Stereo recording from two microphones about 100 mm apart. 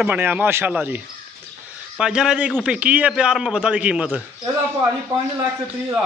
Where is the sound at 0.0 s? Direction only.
20° right (ahead or behind).